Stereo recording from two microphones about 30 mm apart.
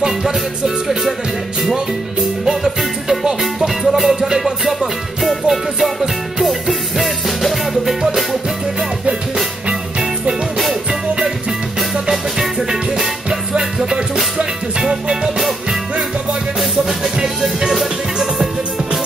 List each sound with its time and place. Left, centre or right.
0.0 s music: centre
2.4 s music: centre
5.5 s music: centre
9.7 s music: right
18.2 s music: right